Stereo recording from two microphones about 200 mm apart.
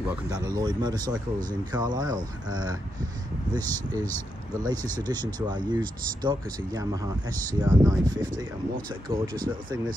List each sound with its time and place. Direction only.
0.3 s speech: 15° right (ahead or behind)
4.6 s speech: 20° right (ahead or behind)
9.1 s speech: 15° right (ahead or behind)